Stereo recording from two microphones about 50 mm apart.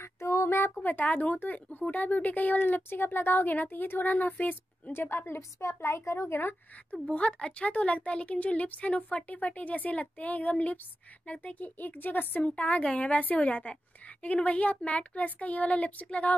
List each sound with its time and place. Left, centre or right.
0.0 s a sound: left
0.8 s speech: left
4.9 s a woman's voice: left
6.9 s speech: left